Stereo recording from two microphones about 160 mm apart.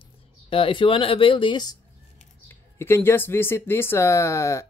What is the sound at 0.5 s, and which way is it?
Speech, 35° left (ahead or behind).